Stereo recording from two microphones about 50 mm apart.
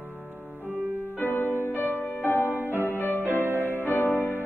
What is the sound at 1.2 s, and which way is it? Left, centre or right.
Music, left.